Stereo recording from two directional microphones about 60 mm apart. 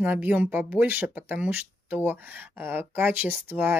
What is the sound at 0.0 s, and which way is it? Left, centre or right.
Speech, right.